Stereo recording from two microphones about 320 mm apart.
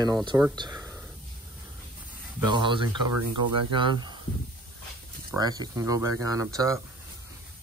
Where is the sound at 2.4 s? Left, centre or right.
Centre.